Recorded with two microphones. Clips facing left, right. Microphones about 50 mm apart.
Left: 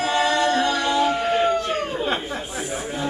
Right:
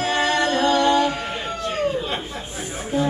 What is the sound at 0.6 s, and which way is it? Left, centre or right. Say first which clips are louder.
Music: right 4 dB; right.